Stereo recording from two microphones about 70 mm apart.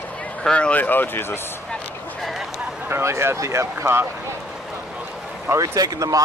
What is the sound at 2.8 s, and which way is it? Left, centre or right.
Speech, right.